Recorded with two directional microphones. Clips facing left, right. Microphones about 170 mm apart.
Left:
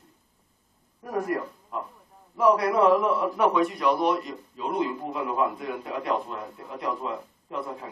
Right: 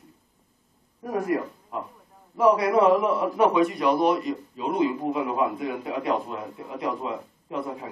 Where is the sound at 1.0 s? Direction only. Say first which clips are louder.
Right 2 dB; 5° right (ahead or behind).